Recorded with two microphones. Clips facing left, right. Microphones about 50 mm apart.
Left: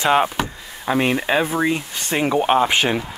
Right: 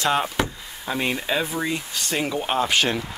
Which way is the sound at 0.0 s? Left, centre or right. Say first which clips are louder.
Left 5 dB; left.